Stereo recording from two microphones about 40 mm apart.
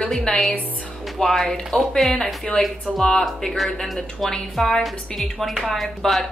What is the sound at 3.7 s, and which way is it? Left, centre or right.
A woman's voice, centre.